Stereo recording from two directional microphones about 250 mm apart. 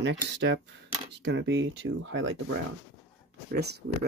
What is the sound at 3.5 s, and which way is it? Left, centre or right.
Speech, right.